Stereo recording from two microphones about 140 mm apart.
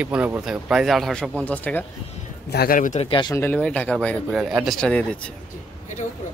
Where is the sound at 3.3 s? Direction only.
15° left (ahead or behind).